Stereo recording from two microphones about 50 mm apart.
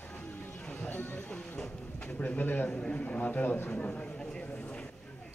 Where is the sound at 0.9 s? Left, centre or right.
Left.